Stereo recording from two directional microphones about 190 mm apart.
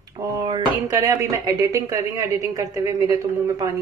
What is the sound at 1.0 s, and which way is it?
Speech, 15° right (ahead or behind).